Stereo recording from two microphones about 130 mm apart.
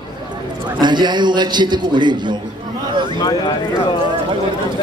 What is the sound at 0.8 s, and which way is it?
A man's voice, 35° right (ahead or behind).